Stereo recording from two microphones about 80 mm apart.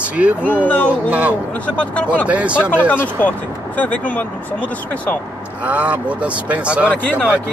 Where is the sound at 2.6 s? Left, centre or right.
Left.